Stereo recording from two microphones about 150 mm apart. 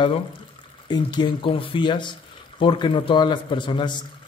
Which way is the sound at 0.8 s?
30° left (ahead or behind).